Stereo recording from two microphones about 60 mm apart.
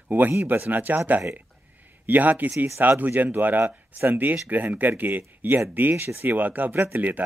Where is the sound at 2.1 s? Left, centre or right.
Right.